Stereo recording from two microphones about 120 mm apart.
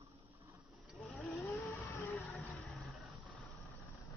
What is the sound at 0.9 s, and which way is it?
Vehicle, 5° left (ahead or behind).